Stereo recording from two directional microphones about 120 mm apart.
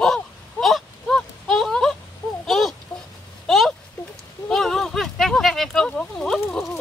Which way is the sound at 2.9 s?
25° left (ahead or behind).